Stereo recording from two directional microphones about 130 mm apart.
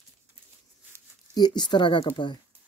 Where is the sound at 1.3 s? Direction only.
30° left (ahead or behind).